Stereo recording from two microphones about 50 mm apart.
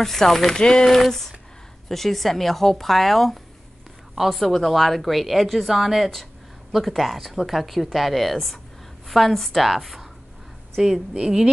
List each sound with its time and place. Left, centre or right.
0.0 s speech: centre
0.6 s speech: centre
0.8 s a woman's voice: centre